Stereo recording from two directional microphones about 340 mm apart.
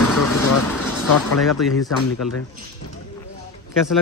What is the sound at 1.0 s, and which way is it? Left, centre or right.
Speech, left.